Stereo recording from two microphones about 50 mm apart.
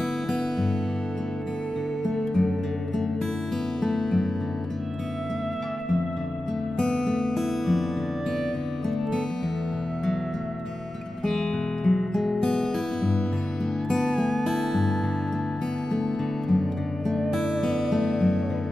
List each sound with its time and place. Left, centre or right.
2.0 s music: centre
3.8 s music: centre
6.8 s music: centre
11.2 s music: centre
13.8 s music: centre
17.1 s music: centre